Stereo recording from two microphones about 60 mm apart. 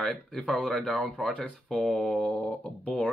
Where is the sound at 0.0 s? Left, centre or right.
Centre.